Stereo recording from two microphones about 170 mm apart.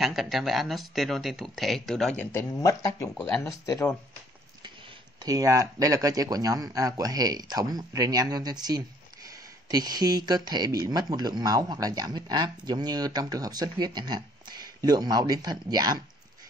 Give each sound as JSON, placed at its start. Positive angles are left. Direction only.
{"t": 0.0, "sound": "speech", "side_deg": 0}
{"t": 2.3, "sound": "speech", "side_deg": 15}
{"t": 3.6, "sound": "speech", "side_deg": 20}
{"t": 5.2, "sound": "speech", "side_deg": -20}